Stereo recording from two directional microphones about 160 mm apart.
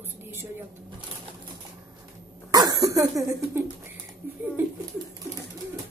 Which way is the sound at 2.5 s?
25° right (ahead or behind).